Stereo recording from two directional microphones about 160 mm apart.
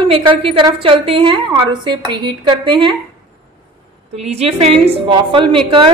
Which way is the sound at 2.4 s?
30° right (ahead or behind).